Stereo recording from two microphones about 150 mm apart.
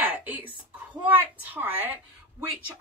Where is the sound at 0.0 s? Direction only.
10° right (ahead or behind).